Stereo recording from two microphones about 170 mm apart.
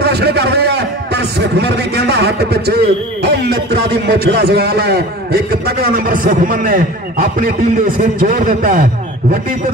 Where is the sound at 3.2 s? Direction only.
75° right (ahead or behind).